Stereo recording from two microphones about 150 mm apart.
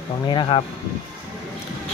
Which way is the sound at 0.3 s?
30° left (ahead or behind).